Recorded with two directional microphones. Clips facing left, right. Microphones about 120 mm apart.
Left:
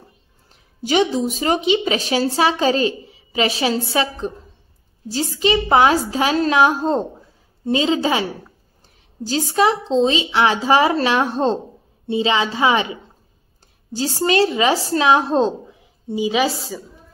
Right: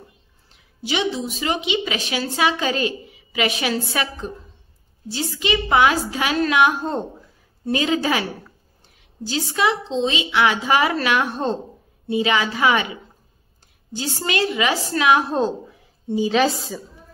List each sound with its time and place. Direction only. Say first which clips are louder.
0.8 s a woman's voice: left 6 dB; 45° left (ahead or behind); by 8.5 s 25° left (ahead or behind)
8.8 s a woman's voice: left 3 dB; 40° left (ahead or behind)
13.9 s a woman's voice: left 6 dB; 35° left (ahead or behind)
16.1 s a woman's voice: even; 10° left (ahead or behind)